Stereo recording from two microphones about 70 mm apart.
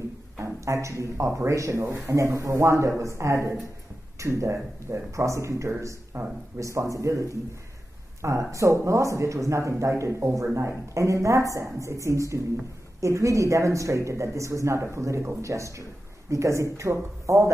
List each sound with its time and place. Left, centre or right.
0.4 s speech: right